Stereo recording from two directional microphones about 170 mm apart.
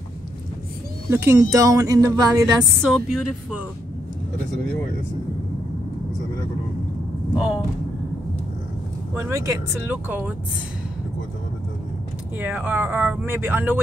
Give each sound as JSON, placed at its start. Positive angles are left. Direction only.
{"t": 1.1, "sound": "speech", "side_deg": -15}
{"t": 2.8, "sound": "speech", "side_deg": 0}
{"t": 7.3, "sound": "speech", "side_deg": -5}
{"t": 9.1, "sound": "speech", "side_deg": -15}
{"t": 12.4, "sound": "speech", "side_deg": -10}